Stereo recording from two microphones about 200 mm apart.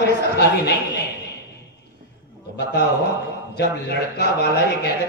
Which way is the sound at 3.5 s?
60° left (ahead or behind).